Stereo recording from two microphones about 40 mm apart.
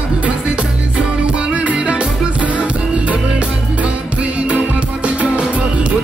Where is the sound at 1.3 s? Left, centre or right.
Right.